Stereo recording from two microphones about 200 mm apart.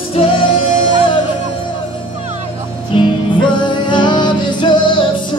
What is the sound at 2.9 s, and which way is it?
Music, 25° left (ahead or behind).